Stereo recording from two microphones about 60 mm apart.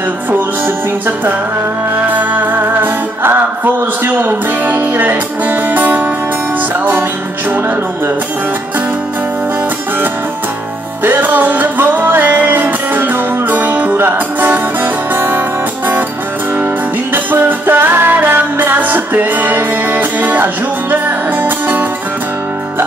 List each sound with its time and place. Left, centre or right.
2.0 s music: right
11.1 s music: right
17.1 s music: right